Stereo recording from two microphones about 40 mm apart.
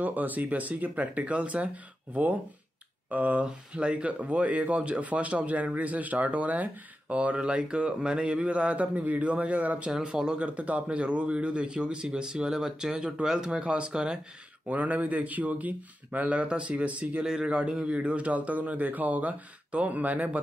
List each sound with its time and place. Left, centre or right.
0.0 s speech: right
3.1 s speech: right
3.4 s speech: right
10.0 s speech: centre
10.4 s speech: right
14.7 s speech: right
17.2 s speech: centre; by 20.2 s right